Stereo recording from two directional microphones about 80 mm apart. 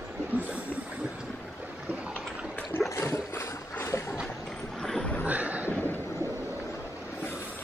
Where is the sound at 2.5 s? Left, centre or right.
Centre.